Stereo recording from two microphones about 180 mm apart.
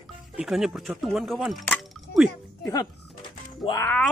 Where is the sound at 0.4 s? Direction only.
Centre (ahead or behind).